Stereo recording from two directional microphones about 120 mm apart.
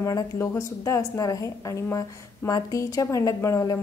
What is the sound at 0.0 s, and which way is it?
A woman's voice, 25° left (ahead or behind).